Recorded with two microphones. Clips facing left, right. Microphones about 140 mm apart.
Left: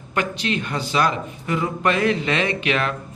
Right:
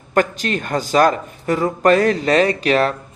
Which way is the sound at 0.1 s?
45° right (ahead or behind).